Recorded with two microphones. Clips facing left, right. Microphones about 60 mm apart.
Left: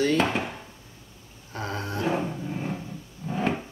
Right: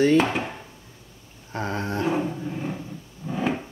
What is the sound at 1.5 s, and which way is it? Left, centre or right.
Speech, right.